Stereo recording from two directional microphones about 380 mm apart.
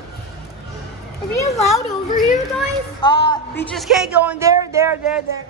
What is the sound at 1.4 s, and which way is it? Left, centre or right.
Speech, centre.